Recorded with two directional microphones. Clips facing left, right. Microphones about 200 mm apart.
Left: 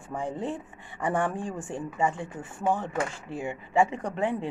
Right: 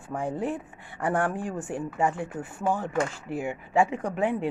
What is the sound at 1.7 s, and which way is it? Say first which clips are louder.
Speech: right 1 dB; 10° right (ahead or behind).